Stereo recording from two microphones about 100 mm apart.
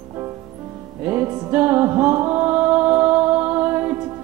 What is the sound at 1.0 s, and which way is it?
Music, 15° right (ahead or behind).